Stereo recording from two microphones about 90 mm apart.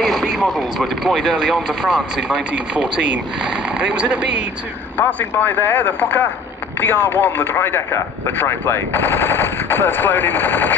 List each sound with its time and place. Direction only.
0.0 s speech: 5° right (ahead or behind)
4.9 s speech: 20° left (ahead or behind)